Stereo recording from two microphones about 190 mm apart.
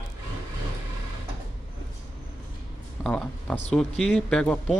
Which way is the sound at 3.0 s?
5° left (ahead or behind).